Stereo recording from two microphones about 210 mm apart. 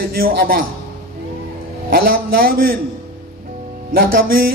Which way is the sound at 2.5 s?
45° right (ahead or behind).